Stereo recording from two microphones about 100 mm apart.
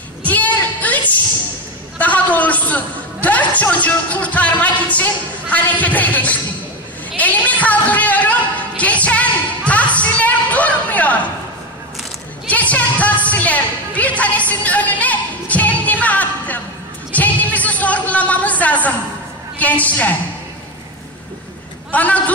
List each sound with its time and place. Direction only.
0.2 s a sound: 15° left (ahead or behind)
9.9 s music: 15° left (ahead or behind)
12.4 s music: 15° left (ahead or behind)
17.1 s a sound: 15° left (ahead or behind)
19.6 s a woman's voice: 15° left (ahead or behind)
21.9 s a woman's voice: 15° left (ahead or behind)